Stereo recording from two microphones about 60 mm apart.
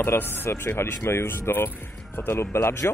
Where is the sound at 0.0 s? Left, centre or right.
Left.